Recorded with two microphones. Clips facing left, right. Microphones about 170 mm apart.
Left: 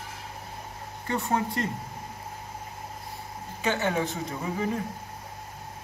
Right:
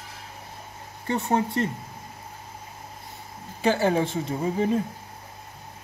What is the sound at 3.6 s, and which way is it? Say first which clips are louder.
A woman's voice: right 5 dB; 35° right (ahead or behind).